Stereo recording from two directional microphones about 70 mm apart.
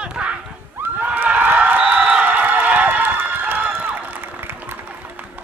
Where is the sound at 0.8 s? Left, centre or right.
Right.